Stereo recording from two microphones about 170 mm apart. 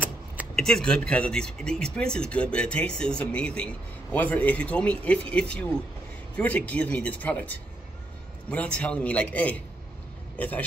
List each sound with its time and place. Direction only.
0.6 s a man's voice: 5° left (ahead or behind)